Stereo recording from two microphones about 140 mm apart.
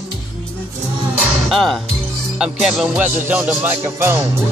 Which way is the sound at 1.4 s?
Centre (ahead or behind).